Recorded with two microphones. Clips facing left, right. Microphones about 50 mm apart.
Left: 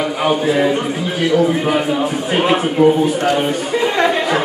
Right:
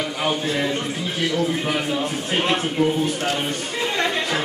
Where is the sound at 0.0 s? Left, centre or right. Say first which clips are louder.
Left 7 dB; centre.